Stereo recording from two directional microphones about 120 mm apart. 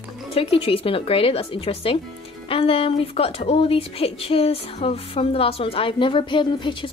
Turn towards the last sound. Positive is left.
turn(degrees=40)  # may be behind; listen again after turning